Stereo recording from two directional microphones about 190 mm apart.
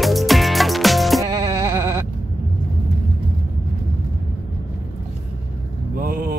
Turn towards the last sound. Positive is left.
turn(degrees=-50)  # may be behind; listen again after turning